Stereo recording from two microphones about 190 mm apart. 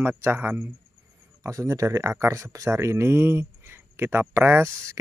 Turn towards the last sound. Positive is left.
turn(degrees=-15)  # may be behind; listen again after turning